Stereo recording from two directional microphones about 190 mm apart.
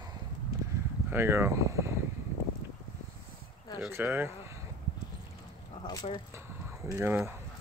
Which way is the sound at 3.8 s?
10° right (ahead or behind).